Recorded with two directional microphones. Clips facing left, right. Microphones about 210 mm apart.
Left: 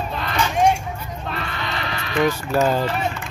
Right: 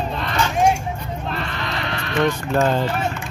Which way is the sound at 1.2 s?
Centre (ahead or behind).